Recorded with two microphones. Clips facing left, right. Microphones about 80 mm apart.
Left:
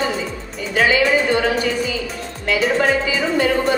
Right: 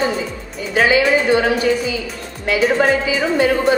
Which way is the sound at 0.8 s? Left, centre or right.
Centre.